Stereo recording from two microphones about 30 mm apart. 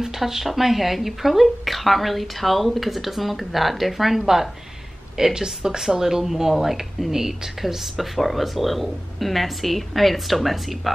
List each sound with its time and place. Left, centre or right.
0.2 s speech: centre
5.1 s speech: right
7.6 s speech: centre